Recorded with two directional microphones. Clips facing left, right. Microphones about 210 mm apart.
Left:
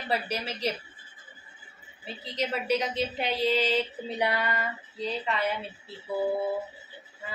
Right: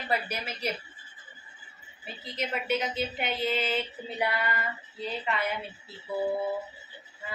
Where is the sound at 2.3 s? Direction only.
35° left (ahead or behind).